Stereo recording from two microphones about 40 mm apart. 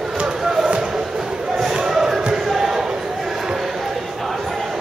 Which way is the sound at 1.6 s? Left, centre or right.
Centre.